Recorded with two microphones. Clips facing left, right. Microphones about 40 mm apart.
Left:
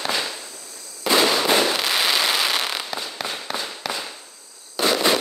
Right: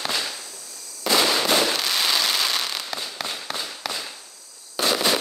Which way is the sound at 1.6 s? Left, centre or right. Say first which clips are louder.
Left 2 dB; centre.